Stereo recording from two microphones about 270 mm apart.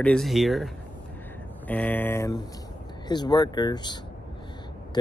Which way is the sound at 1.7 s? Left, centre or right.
Centre.